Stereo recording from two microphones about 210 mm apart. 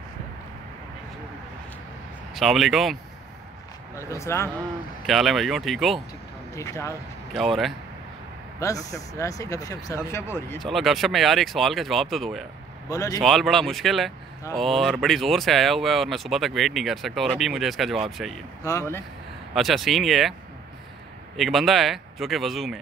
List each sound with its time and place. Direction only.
2.3 s speech: centre (ahead or behind)
3.9 s speech: 15° left (ahead or behind)
5.0 s speech: centre (ahead or behind)
6.5 s speech: 15° left (ahead or behind)
7.3 s speech: centre (ahead or behind)
8.5 s speech: 15° left (ahead or behind)
12.9 s speech: 15° left (ahead or behind)
13.2 s speech: centre (ahead or behind)
18.6 s speech: 15° left (ahead or behind)
19.5 s speech: centre (ahead or behind)
21.4 s speech: centre (ahead or behind)